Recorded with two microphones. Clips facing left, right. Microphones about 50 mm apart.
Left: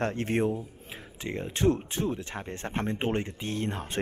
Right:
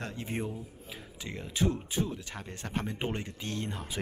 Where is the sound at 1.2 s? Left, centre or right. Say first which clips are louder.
Left 5 dB; left.